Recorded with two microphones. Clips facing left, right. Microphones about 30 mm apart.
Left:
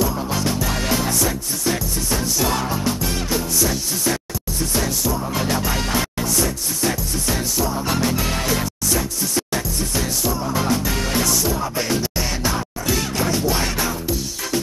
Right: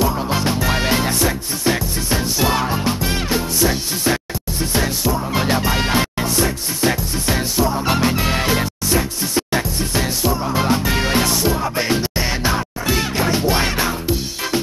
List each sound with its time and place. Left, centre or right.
0.0 s music: right